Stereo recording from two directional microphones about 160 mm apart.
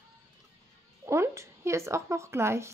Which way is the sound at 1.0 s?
15° right (ahead or behind).